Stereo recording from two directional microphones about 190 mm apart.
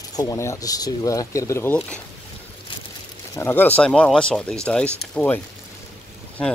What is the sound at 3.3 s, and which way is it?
Speech, 10° left (ahead or behind).